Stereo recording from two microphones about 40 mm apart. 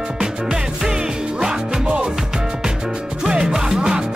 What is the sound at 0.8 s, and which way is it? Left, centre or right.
Music, centre.